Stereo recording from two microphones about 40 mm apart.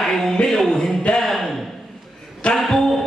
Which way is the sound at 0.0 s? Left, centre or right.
Centre.